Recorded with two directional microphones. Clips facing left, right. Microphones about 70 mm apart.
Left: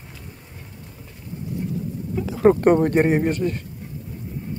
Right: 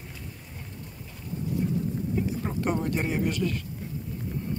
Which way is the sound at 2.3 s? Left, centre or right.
Left.